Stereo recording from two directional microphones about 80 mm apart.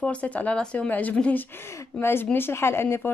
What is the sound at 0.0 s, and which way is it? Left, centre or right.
A woman's voice, centre.